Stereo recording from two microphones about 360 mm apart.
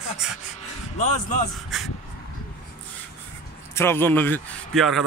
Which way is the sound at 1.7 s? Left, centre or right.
Centre.